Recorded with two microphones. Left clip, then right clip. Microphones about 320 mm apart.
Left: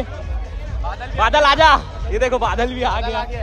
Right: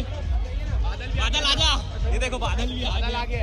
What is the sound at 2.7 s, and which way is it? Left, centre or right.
Speech, right.